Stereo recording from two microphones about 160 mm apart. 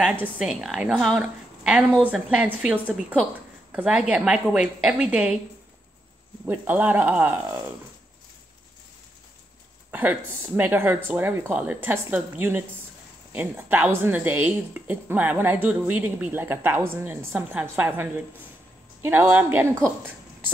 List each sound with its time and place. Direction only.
0.0 s a woman's voice: 10° right (ahead or behind)
6.4 s a woman's voice: 15° right (ahead or behind)
9.8 s a woman's voice: 10° right (ahead or behind)
19.0 s a woman's voice: 10° right (ahead or behind)